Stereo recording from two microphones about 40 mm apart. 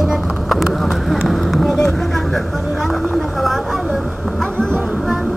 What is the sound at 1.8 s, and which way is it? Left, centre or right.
Vehicle, centre.